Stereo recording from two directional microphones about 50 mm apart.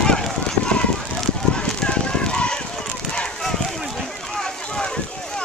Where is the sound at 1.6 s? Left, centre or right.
Left.